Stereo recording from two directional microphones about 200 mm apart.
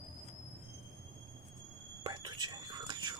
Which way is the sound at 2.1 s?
20° right (ahead or behind).